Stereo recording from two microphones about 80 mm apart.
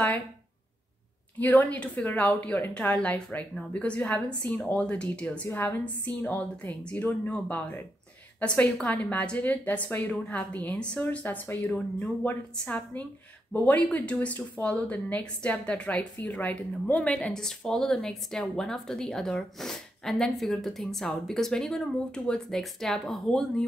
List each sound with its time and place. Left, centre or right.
1.4 s a woman's voice: centre